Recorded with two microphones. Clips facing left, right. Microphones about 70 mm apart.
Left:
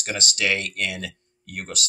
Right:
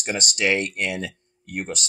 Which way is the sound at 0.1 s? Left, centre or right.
Right.